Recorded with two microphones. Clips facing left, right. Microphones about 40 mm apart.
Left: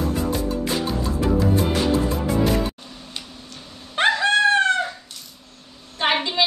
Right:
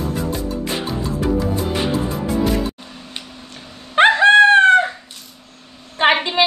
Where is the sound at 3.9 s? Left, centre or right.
Right.